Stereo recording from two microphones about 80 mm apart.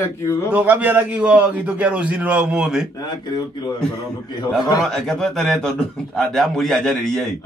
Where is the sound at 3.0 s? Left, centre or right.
Left.